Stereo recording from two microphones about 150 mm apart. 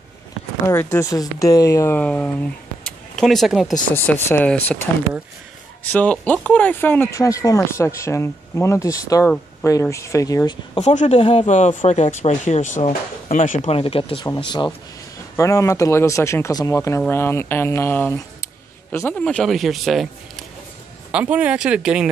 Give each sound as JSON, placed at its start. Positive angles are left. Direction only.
{"t": 0.7, "sound": "speech", "side_deg": 15}
{"t": 2.8, "sound": "a sound", "side_deg": 0}
{"t": 3.9, "sound": "speech", "side_deg": 15}
{"t": 5.9, "sound": "speech", "side_deg": 10}
{"t": 11.0, "sound": "speech", "side_deg": 45}
{"t": 13.7, "sound": "speech", "side_deg": 40}